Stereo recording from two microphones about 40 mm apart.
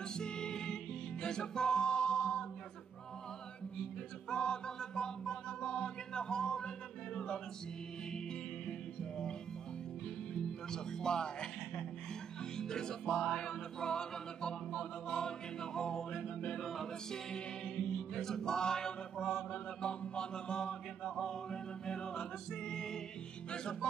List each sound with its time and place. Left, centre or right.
0.0 s music: centre
3.7 s music: centre
10.3 s speech: centre
12.5 s music: centre
16.6 s music: centre
17.1 s music: centre
19.5 s chant: left